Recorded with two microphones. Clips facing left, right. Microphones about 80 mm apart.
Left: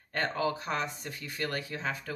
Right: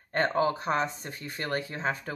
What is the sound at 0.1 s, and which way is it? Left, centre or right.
Speech, right.